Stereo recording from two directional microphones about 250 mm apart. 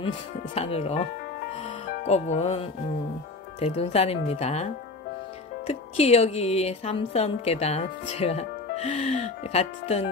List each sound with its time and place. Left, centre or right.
0.6 s speech: left
2.0 s speech: left
5.7 s speech: left